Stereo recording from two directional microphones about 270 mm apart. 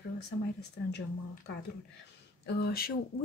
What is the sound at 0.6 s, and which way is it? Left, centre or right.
Speech, left.